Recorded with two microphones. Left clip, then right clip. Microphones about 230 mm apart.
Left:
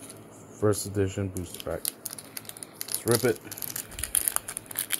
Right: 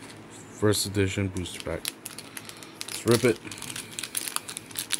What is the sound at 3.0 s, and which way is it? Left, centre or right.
Speech, centre.